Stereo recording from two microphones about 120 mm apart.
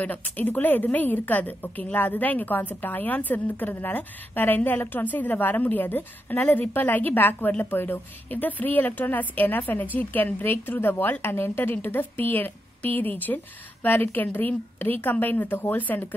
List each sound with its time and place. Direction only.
0.0 s a woman's voice: 15° left (ahead or behind)